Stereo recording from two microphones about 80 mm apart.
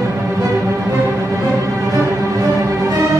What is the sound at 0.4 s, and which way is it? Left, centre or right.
Music, right.